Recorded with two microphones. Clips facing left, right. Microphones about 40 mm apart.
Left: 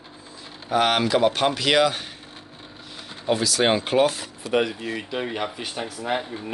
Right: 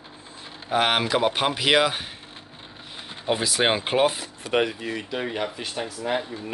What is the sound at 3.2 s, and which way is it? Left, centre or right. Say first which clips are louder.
Speech: left 2 dB; right.